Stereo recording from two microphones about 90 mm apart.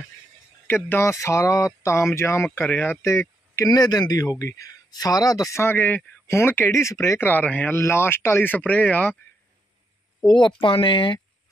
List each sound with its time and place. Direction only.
0.7 s speech: 25° left (ahead or behind)
3.0 s speech: 30° left (ahead or behind)
3.7 s speech: 50° left (ahead or behind)
5.6 s speech: 25° left (ahead or behind)
7.2 s speech: 20° left (ahead or behind)
10.2 s speech: 60° left (ahead or behind)